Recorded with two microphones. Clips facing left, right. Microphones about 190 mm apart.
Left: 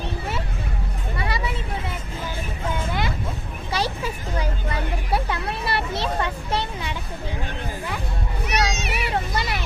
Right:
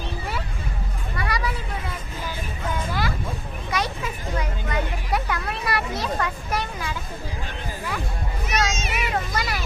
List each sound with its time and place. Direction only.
1.1 s children playing: 25° left (ahead or behind)
2.6 s vehicle: 25° left (ahead or behind)
3.7 s hubbub: 30° left (ahead or behind)
8.5 s children playing: 65° left (ahead or behind)
9.1 s a sound: 30° left (ahead or behind)